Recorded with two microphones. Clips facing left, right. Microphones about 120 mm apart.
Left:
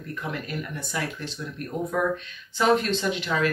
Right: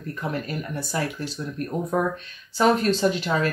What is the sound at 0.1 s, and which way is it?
Speech, 35° right (ahead or behind).